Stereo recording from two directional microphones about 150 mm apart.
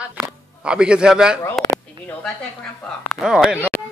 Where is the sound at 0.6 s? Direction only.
5° right (ahead or behind).